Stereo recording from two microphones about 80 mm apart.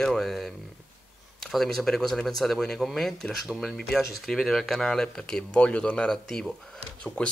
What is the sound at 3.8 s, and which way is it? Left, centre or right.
Speech, centre.